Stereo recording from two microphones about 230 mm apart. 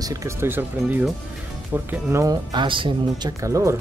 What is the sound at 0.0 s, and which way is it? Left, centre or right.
Speech, centre.